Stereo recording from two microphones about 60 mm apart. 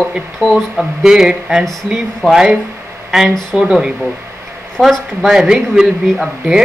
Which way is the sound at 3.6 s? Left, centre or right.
Centre.